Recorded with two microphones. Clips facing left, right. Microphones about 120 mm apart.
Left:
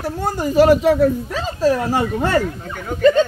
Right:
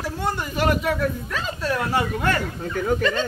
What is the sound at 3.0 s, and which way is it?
Speech, 45° left (ahead or behind).